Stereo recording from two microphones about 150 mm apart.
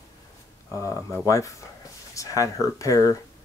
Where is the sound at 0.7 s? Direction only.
20° left (ahead or behind).